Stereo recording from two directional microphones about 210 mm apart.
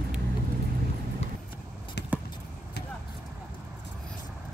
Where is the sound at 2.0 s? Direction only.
55° left (ahead or behind).